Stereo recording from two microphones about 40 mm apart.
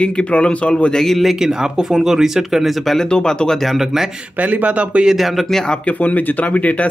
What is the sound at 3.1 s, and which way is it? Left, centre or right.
Speech, centre.